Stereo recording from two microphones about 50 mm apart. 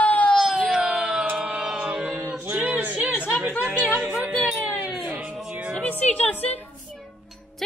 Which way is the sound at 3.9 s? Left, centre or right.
Right.